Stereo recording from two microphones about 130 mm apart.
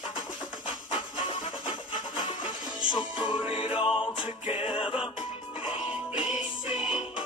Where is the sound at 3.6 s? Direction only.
40° left (ahead or behind).